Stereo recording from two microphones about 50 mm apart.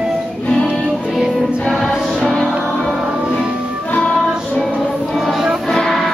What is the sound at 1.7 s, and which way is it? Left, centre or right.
Music, centre.